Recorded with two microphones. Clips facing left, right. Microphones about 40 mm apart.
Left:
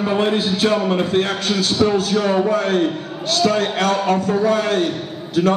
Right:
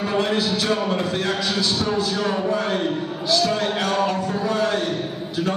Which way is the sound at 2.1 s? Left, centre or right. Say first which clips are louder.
Left 6 dB; left.